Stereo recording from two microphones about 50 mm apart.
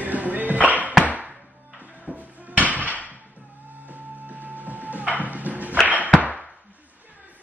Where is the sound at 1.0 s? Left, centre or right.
Right.